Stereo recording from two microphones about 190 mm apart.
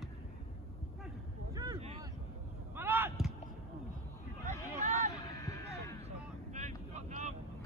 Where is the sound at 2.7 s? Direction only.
10° right (ahead or behind).